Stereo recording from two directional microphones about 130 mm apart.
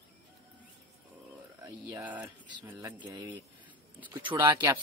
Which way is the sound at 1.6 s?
40° right (ahead or behind).